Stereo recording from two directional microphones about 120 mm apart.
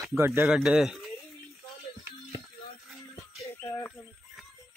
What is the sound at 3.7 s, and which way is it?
Chicken, 15° left (ahead or behind).